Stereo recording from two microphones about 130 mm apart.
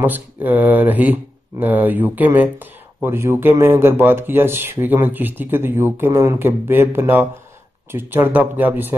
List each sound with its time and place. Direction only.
0.0 s speech: 15° right (ahead or behind)